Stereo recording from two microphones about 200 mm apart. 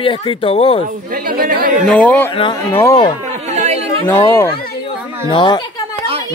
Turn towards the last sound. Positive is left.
turn(degrees=25)  # may be behind; listen again after turning